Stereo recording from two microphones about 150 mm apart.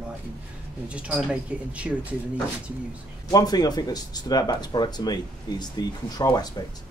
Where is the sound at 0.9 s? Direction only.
5° right (ahead or behind).